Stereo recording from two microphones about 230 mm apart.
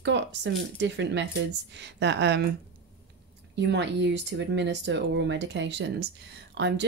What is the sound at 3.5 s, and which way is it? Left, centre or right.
Speech, right.